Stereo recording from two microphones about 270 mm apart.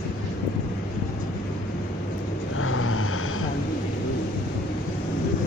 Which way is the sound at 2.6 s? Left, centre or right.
Left.